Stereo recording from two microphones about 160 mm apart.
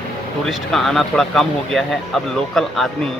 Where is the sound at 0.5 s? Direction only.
Centre (ahead or behind).